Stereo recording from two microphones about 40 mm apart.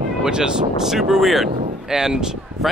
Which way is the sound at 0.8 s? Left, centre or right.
Centre.